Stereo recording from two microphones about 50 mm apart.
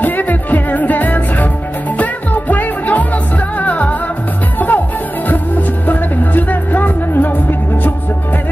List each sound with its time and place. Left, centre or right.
0.0 s music: left
5.9 s music: left